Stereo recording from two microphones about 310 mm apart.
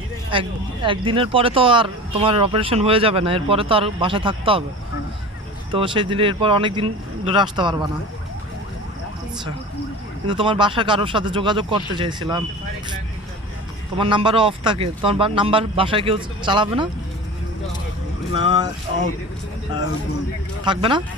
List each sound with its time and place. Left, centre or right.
0.3 s speech: centre
5.7 s speech: centre
10.2 s speech: centre
13.9 s speech: centre
20.6 s speech: centre